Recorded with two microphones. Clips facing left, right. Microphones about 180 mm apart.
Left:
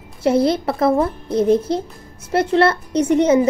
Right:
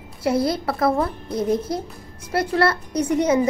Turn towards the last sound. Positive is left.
turn(degrees=25)  # may be behind; listen again after turning